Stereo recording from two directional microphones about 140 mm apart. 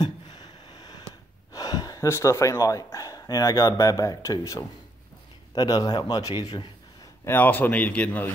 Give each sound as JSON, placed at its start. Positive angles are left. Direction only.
{"t": 0.0, "sound": "a sound", "side_deg": 30}
{"t": 1.5, "sound": "a man's voice", "side_deg": 25}
{"t": 7.2, "sound": "speech", "side_deg": 15}